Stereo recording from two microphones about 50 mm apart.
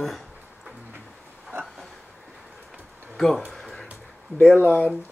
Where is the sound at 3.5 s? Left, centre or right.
Centre.